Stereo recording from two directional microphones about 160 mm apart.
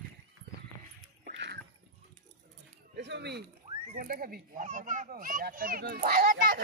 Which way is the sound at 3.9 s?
60° right (ahead or behind).